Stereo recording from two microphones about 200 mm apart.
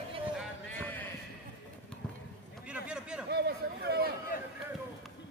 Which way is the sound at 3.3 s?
55° right (ahead or behind).